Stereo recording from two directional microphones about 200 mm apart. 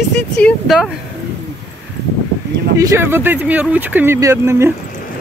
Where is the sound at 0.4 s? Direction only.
5° left (ahead or behind).